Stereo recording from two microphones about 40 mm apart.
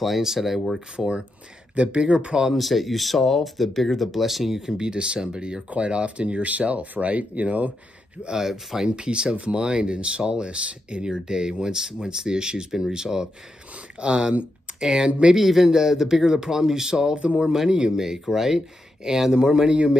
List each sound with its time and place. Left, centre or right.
0.0 s speech: centre
0.9 s speech: right
2.4 s speech: centre; by 7.7 s right
8.4 s speech: centre
8.8 s speech: right
14.8 s speech: centre
15.0 s speech: right
15.3 s speech: centre; by 20.0 s right